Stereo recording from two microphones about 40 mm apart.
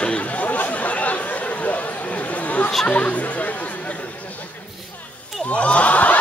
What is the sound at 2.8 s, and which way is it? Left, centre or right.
Chatter, left.